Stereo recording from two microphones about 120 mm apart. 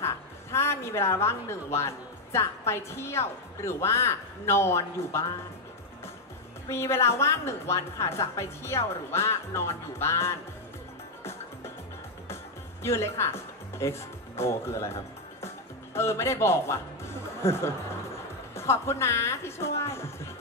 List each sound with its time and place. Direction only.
0.0 s a woman's voice: 20° left (ahead or behind)
6.7 s a woman's voice: 20° left (ahead or behind)
12.8 s speech: 20° left (ahead or behind)
15.4 s music: 20° left (ahead or behind)
18.5 s a woman's voice: 20° left (ahead or behind)